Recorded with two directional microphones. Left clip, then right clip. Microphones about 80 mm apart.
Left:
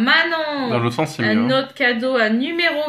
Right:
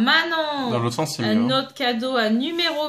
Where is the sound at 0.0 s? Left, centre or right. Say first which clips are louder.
Left 3 dB; right.